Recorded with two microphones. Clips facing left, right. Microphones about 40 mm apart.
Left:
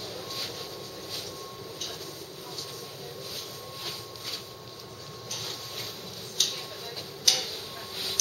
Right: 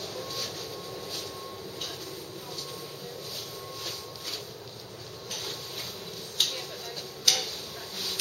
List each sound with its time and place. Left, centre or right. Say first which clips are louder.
0.2 s vehicle: right 2 dB; centre
6.4 s a sound: right 1 dB; centre
7.3 s tick-tock: even; centre